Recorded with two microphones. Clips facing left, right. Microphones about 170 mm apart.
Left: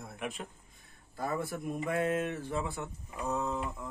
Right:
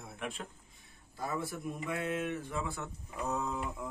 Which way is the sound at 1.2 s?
55° left (ahead or behind).